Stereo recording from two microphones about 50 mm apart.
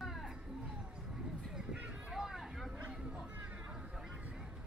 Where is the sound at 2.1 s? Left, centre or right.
Centre.